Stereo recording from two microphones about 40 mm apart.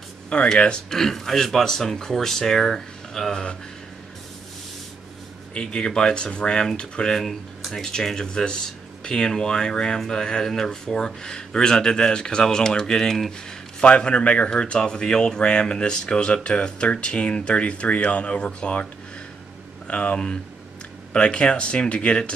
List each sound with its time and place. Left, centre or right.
0.6 s speech: left
0.8 s speech: centre
5.5 s speech: left
13.7 s speech: left
19.9 s speech: left